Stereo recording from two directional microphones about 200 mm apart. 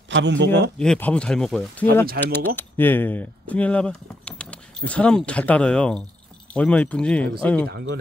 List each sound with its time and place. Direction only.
0.1 s speech: 65° right (ahead or behind)
0.7 s speech: 5° left (ahead or behind)
7.7 s speech: 55° right (ahead or behind)